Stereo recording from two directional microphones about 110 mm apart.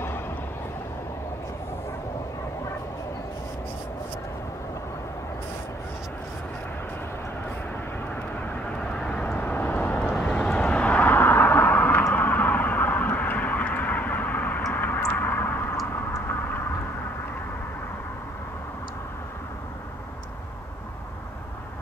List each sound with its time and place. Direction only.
9.0 s vehicle: 10° left (ahead or behind)
14.7 s a sound: 15° left (ahead or behind)
16.3 s vehicle: 15° left (ahead or behind)